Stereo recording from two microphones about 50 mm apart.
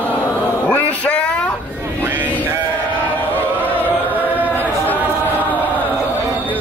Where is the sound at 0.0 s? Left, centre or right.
Left.